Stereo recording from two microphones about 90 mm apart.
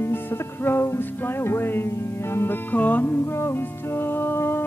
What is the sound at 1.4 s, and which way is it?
Music, 30° left (ahead or behind).